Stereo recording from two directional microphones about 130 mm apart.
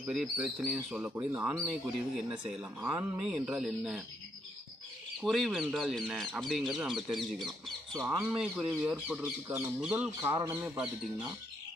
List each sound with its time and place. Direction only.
0.1 s speech: 5° right (ahead or behind)
2.8 s speech: 20° right (ahead or behind)
3.2 s speech: 5° right (ahead or behind)
5.2 s speech: centre (ahead or behind)
8.0 s speech: 25° right (ahead or behind)
8.4 s speech: 10° right (ahead or behind)